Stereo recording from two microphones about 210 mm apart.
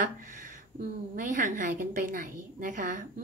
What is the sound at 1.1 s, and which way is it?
A woman's voice, 40° right (ahead or behind).